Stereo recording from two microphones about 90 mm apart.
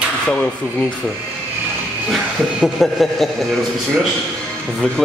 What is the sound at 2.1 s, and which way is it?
Speech, centre (ahead or behind).